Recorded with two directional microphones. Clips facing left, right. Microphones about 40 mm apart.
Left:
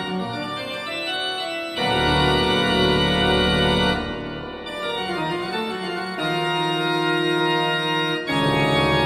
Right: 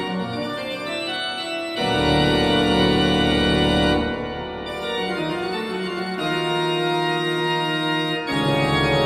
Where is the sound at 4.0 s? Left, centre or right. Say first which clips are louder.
Right 4 dB; centre.